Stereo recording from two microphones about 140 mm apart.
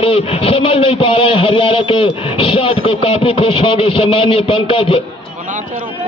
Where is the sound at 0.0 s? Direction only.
40° left (ahead or behind).